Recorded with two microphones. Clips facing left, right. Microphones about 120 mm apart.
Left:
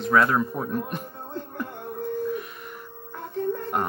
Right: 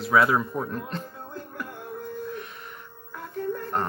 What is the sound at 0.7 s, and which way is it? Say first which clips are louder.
Music: left 3 dB; 15° left (ahead or behind).